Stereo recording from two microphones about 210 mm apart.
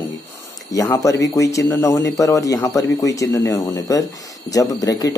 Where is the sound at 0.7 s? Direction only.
15° left (ahead or behind).